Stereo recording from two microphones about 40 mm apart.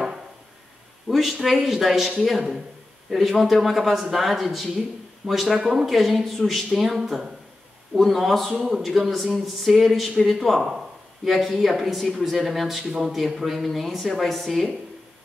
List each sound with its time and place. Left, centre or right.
1.0 s speech: centre
9.8 s speech: centre